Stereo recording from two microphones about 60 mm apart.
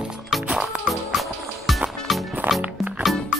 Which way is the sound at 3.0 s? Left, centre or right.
Centre.